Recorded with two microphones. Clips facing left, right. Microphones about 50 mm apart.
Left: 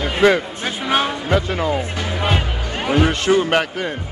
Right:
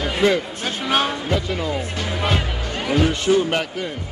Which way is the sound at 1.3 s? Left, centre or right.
Left.